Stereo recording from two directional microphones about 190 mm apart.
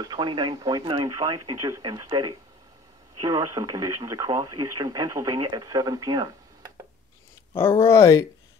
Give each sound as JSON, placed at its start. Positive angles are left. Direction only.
{"t": 0.0, "sound": "speech", "side_deg": -25}
{"t": 7.8, "sound": "speech", "side_deg": 15}